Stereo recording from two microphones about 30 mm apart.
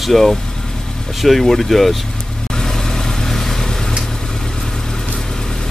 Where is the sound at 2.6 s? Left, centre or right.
Centre.